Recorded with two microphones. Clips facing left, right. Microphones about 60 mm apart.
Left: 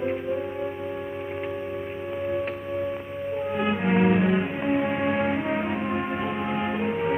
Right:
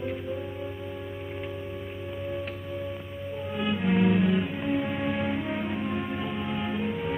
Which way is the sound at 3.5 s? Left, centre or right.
Left.